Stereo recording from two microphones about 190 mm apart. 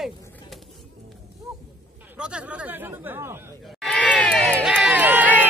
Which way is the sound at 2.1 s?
5° right (ahead or behind).